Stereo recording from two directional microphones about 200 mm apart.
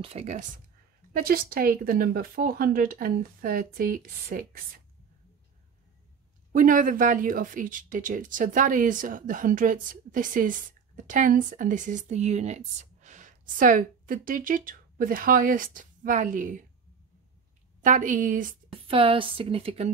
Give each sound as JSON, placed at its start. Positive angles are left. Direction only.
{"t": 0.0, "sound": "speech", "side_deg": -30}
{"t": 1.1, "sound": "speech", "side_deg": -45}
{"t": 6.5, "sound": "speech", "side_deg": -40}
{"t": 17.8, "sound": "speech", "side_deg": -40}
{"t": 18.7, "sound": "a woman's voice", "side_deg": -25}